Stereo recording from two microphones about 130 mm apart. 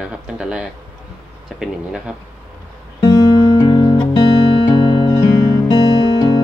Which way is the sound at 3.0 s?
30° left (ahead or behind).